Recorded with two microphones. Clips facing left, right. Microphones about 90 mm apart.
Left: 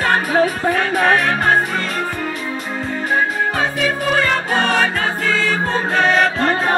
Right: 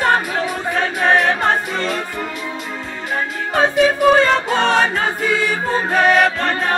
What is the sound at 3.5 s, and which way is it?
Music, 25° right (ahead or behind).